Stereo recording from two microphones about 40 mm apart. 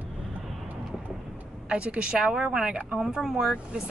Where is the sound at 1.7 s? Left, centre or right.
Right; by 3.5 s centre.